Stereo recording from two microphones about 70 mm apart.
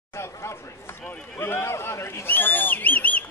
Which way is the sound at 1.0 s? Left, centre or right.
Centre.